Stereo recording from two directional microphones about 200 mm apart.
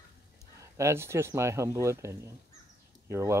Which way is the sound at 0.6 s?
15° right (ahead or behind).